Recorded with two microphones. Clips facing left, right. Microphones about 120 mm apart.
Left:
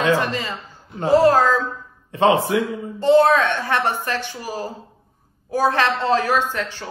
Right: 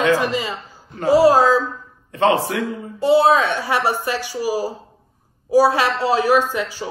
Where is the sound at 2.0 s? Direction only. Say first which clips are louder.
Left 1 dB; 25° left (ahead or behind).